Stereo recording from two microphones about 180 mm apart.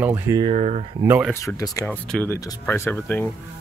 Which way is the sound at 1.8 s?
10° left (ahead or behind).